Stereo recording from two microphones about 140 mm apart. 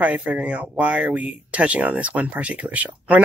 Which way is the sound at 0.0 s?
10° right (ahead or behind).